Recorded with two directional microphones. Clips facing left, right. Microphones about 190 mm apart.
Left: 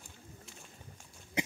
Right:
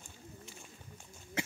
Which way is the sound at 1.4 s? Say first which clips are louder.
Left 3 dB; 15° left (ahead or behind).